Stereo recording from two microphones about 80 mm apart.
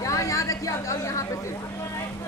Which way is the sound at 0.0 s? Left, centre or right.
Left.